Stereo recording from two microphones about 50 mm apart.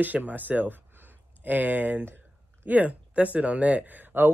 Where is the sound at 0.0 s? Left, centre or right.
Right.